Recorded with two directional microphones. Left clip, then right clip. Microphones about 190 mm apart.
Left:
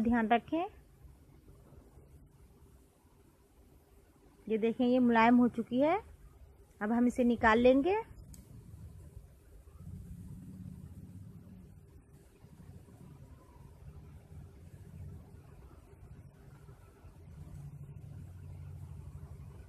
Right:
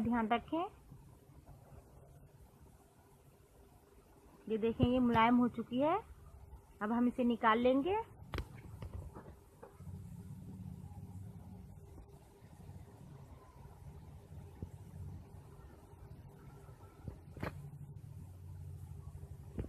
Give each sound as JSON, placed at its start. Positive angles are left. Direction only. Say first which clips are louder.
{"t": 0.1, "sound": "a woman's voice", "louder": "left 5 dB", "side_deg": 30}
{"t": 4.5, "sound": "a woman's voice", "louder": "left 4 dB", "side_deg": 30}